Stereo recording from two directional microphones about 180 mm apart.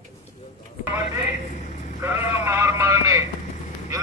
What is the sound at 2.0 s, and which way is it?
Sheep, 15° right (ahead or behind).